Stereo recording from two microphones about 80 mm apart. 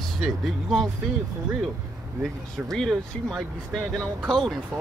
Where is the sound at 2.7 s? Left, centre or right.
Centre.